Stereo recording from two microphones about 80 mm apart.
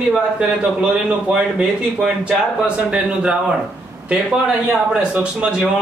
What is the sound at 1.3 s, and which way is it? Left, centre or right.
Speech, centre.